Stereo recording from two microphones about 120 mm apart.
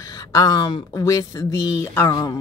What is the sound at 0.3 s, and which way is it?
Speech, 30° left (ahead or behind).